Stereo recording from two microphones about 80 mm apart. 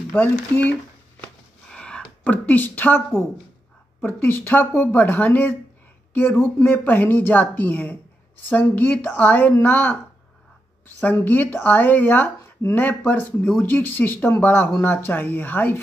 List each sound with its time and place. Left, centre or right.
0.1 s speech: centre
1.2 s a sound: centre
4.0 s speech: left
11.0 s speech: left